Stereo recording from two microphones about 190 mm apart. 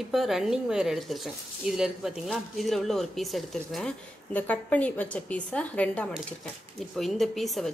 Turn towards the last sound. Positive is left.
turn(degrees=0)  # may be behind; listen again after turning